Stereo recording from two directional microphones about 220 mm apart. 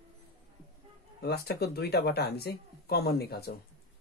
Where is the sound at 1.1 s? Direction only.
45° left (ahead or behind).